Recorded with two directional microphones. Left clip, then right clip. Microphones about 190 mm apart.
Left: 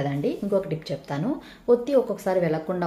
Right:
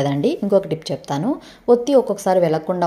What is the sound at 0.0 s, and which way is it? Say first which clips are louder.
A woman's voice: right 7 dB; 40° right (ahead or behind).